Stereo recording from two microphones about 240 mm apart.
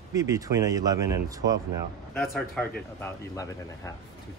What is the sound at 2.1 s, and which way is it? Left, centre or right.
Speech, centre.